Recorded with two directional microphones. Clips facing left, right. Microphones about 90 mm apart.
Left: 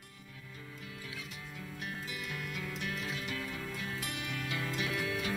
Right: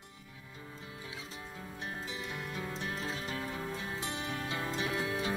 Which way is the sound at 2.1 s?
25° right (ahead or behind).